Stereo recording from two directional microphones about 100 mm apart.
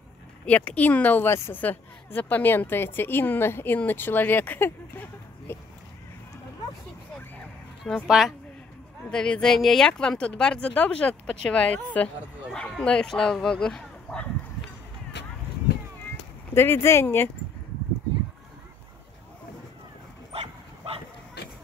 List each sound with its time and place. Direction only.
0.5 s a woman's voice: 15° left (ahead or behind)
7.8 s speech: centre (ahead or behind)
16.5 s a woman's voice: 25° left (ahead or behind)
20.3 s bow-wow: 80° right